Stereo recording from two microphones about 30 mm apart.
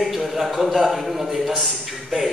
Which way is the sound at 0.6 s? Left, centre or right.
Centre.